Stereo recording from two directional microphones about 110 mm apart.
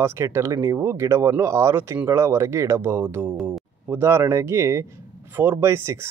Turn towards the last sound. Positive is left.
turn(degrees=-25)  # may be behind; listen again after turning